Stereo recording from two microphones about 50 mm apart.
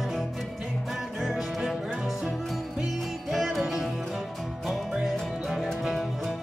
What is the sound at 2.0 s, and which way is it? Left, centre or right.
Music, centre.